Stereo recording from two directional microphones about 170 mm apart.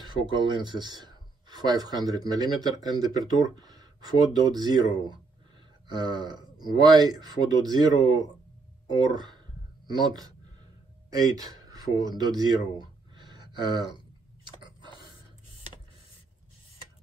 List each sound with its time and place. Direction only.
0.0 s speech: 25° right (ahead or behind)
5.9 s speech: 25° right (ahead or behind)
9.1 s speech: 25° right (ahead or behind)
14.6 s chewing: 25° right (ahead or behind)